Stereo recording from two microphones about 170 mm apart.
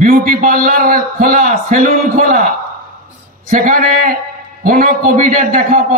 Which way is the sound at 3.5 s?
50° right (ahead or behind).